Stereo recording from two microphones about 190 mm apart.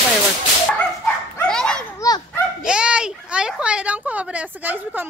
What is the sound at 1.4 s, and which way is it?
Dog, 5° left (ahead or behind).